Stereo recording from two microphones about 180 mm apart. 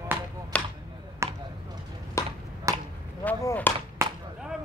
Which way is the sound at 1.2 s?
15° right (ahead or behind).